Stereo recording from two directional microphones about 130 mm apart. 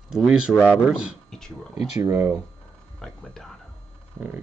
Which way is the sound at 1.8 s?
20° right (ahead or behind).